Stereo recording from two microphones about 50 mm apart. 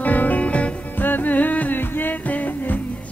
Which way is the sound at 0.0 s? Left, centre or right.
Left.